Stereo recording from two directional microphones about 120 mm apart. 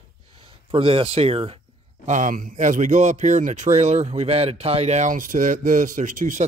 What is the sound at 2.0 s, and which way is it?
Speech, 90° right.